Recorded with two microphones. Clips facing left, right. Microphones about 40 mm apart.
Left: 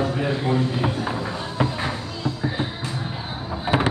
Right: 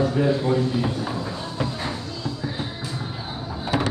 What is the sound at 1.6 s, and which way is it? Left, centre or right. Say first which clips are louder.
Music: left 4 dB; left.